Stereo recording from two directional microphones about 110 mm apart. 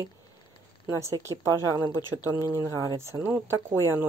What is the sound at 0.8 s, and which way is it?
Speech, 25° right (ahead or behind).